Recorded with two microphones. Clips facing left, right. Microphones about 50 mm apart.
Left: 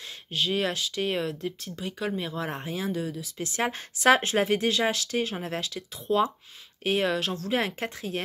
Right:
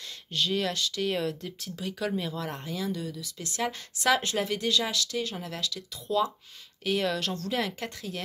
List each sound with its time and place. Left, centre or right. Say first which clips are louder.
0.3 s speech: left 2 dB; centre
1.2 s speech: left 1 dB; centre
2.3 s a woman's voice: left 2 dB; left
7.5 s a woman's voice: left 6 dB; left